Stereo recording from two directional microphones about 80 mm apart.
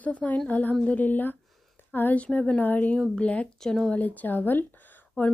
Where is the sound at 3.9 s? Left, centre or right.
Left.